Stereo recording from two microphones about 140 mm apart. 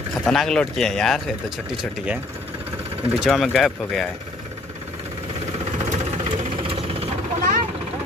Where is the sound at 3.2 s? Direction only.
Centre (ahead or behind).